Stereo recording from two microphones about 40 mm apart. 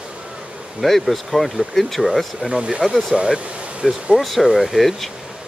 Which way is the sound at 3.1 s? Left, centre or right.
Right.